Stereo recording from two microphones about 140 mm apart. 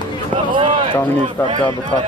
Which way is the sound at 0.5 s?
35° right (ahead or behind).